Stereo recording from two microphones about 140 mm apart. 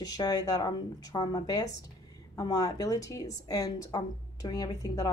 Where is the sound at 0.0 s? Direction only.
25° left (ahead or behind).